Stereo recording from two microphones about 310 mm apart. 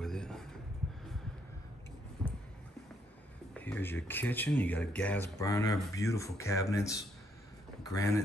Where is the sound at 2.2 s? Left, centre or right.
Centre.